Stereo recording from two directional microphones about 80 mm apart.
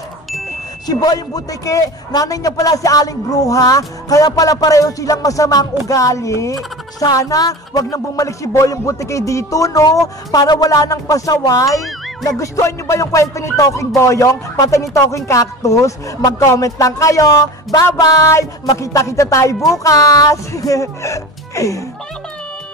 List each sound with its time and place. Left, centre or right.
0.8 s speech: left
12.2 s music: left
16.3 s speech: left